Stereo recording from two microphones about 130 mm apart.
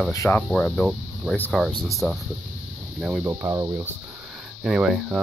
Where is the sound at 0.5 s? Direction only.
10° left (ahead or behind).